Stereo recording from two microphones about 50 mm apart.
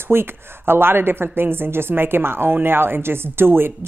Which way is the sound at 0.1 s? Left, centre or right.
Right.